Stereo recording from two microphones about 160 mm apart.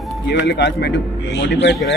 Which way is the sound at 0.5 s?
90° left.